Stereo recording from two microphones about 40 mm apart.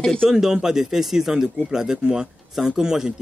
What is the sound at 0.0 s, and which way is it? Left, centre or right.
Speech, centre.